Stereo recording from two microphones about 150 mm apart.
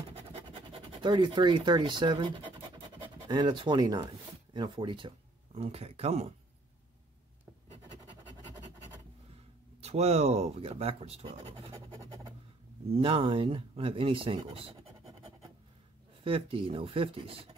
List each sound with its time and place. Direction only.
1.0 s speech: 30° right (ahead or behind)
9.8 s speech: 45° right (ahead or behind)
12.9 s speech: 35° right (ahead or behind)
16.3 s speech: 35° right (ahead or behind)